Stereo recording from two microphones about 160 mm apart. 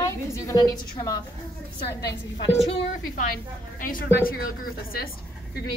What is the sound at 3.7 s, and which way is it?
A woman's voice, 60° left (ahead or behind).